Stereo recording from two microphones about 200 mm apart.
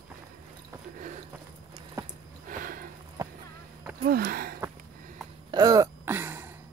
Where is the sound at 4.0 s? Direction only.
50° right (ahead or behind).